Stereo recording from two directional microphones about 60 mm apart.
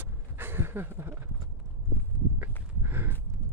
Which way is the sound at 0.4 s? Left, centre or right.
Right.